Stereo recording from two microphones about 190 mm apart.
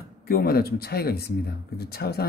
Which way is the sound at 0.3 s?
55° left (ahead or behind).